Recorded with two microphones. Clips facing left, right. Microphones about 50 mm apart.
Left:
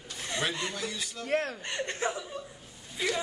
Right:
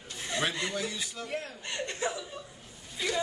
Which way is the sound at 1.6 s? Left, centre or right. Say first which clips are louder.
Left 1 dB; left.